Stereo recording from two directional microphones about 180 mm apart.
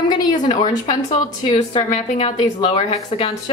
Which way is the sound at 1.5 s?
25° left (ahead or behind).